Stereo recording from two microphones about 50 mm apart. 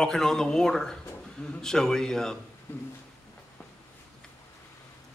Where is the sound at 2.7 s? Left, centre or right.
Left.